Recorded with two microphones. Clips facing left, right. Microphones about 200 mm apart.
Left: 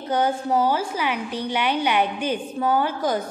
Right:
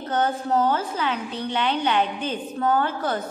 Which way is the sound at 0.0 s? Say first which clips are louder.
Left 2 dB; 10° left (ahead or behind).